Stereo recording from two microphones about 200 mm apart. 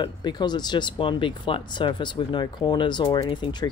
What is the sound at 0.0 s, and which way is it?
Speech, 20° left (ahead or behind).